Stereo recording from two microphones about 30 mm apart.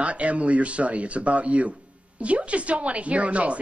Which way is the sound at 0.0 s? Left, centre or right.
Right.